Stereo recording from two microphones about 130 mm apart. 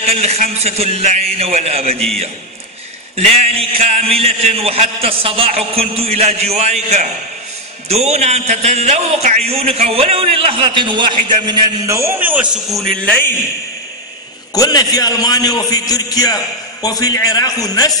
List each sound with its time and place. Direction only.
0.0 s a man's voice: 55° right (ahead or behind)
3.2 s a man's voice: 55° right (ahead or behind)
9.5 s a man's voice: 50° right (ahead or behind); by 12.1 s 25° right (ahead or behind)
12.2 s a man's voice: 15° right (ahead or behind)
12.7 s speech: 5° left (ahead or behind)
14.5 s a man's voice: 30° left (ahead or behind)